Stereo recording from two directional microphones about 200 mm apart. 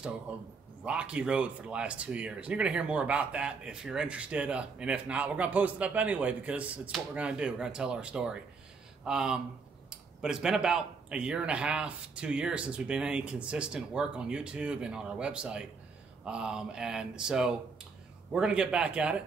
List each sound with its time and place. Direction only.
0.3 s speech: 5° right (ahead or behind)